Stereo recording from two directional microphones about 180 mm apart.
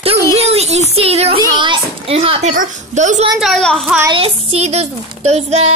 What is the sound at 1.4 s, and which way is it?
A child's voice, 25° right (ahead or behind).